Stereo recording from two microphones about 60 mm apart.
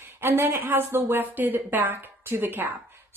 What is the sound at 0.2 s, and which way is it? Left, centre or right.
Speech, right.